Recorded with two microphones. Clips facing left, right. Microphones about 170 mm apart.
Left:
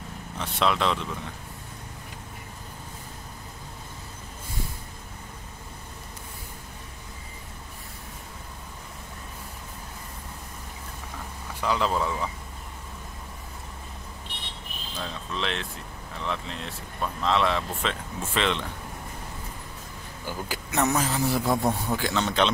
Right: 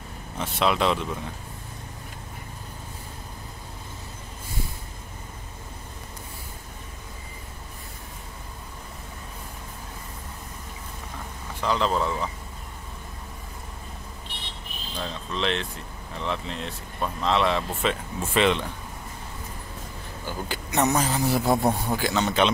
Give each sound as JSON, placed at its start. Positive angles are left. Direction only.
{"t": 0.4, "sound": "speech", "side_deg": -5}
{"t": 11.6, "sound": "speech", "side_deg": 10}
{"t": 15.0, "sound": "speech", "side_deg": 0}
{"t": 20.4, "sound": "a sound", "side_deg": 5}
{"t": 21.0, "sound": "speech", "side_deg": 0}
{"t": 21.3, "sound": "a sound", "side_deg": -25}
{"t": 21.9, "sound": "speech", "side_deg": -5}